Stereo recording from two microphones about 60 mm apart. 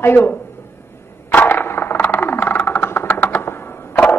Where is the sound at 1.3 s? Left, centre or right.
Left.